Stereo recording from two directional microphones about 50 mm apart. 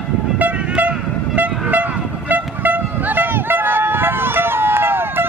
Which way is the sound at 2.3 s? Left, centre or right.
Right.